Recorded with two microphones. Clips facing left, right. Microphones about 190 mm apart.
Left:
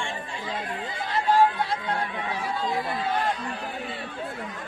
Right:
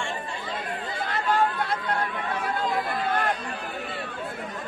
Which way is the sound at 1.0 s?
55° right (ahead or behind).